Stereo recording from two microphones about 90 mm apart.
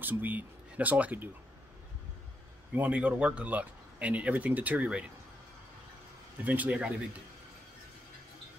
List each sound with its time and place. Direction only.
0.0 s speech: 20° right (ahead or behind)
2.7 s speech: 15° right (ahead or behind)
6.4 s speech: 20° right (ahead or behind)